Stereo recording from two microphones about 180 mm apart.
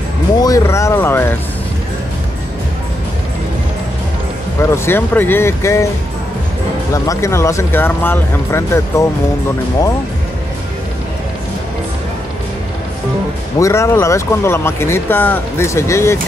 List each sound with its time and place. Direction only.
0.4 s speech: 20° left (ahead or behind)
4.6 s speech: 15° left (ahead or behind)
6.9 s speech: 15° left (ahead or behind)
13.6 s speech: 15° left (ahead or behind)